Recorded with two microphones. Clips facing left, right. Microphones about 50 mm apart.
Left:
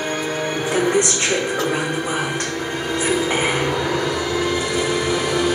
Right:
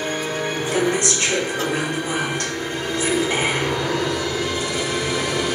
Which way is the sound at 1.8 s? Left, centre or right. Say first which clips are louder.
Left 1 dB; centre.